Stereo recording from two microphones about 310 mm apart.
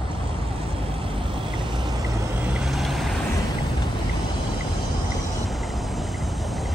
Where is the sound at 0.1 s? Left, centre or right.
Centre.